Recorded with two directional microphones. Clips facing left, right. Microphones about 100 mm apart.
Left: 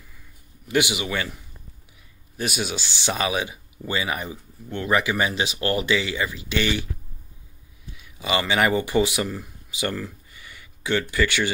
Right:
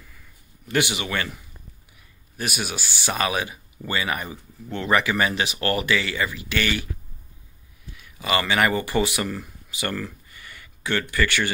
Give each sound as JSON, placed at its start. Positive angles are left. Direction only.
{"t": 0.7, "sound": "speech", "side_deg": 15}
{"t": 2.6, "sound": "speech", "side_deg": 20}
{"t": 4.6, "sound": "speech", "side_deg": 0}
{"t": 4.9, "sound": "speech", "side_deg": 15}
{"t": 8.2, "sound": "speech", "side_deg": 20}